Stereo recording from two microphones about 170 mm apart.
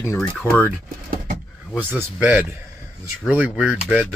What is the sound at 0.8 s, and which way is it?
Power windows, 60° right (ahead or behind).